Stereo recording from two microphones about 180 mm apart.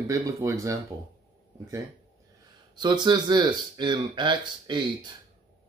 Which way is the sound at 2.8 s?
25° right (ahead or behind).